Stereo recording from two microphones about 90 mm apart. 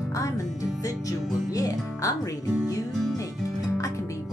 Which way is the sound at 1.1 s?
40° left (ahead or behind).